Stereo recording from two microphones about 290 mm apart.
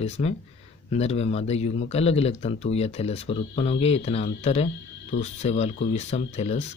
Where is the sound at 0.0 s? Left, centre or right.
Left.